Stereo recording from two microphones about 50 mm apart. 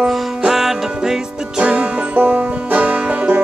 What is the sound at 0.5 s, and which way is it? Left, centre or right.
Music, centre.